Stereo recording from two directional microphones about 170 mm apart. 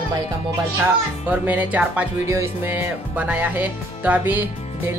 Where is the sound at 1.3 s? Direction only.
10° right (ahead or behind).